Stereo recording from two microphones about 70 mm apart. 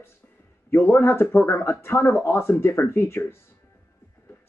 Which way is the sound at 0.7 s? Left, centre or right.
Left.